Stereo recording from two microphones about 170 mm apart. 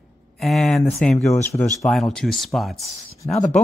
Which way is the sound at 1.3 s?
15° left (ahead or behind).